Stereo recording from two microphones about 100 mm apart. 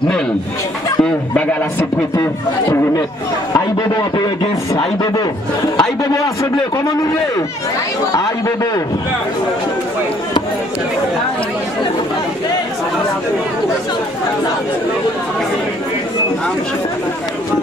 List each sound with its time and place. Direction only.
4.7 s speech: 45° left (ahead or behind)
5.8 s a sound: 35° left (ahead or behind)
8.1 s a man's voice: 35° left (ahead or behind)